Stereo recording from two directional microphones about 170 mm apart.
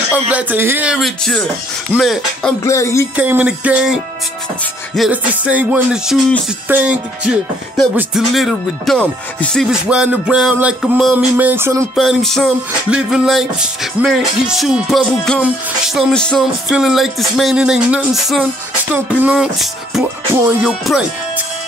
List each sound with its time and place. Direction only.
0.1 s music: 10° right (ahead or behind)
0.9 s music: centre (ahead or behind)
2.6 s speech: 15° left (ahead or behind)
3.2 s music: 10° right (ahead or behind)
11.9 s music: centre (ahead or behind)
20.3 s music: 15° right (ahead or behind)